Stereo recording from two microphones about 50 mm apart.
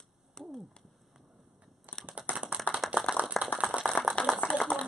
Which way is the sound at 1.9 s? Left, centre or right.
Right.